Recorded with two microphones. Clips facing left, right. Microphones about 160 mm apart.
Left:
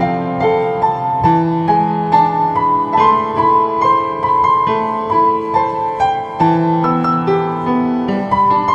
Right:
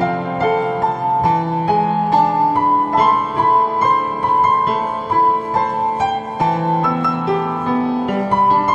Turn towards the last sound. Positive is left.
turn(degrees=35)  # may be behind; listen again after turning